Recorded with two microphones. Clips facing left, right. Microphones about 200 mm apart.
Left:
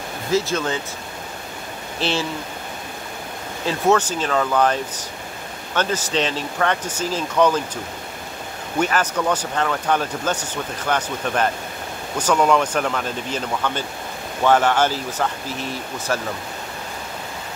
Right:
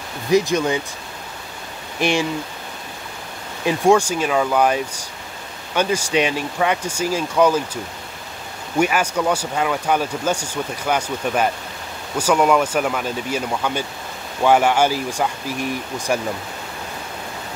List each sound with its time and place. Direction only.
0.3 s speech: 15° right (ahead or behind)
2.0 s speech: 15° right (ahead or behind)
3.6 s speech: 10° right (ahead or behind)